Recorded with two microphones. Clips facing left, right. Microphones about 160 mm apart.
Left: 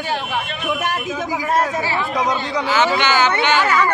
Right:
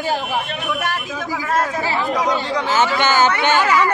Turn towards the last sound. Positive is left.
turn(degrees=-45)  # may be behind; listen again after turning